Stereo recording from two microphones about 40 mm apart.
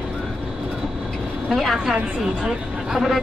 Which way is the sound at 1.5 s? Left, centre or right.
Centre.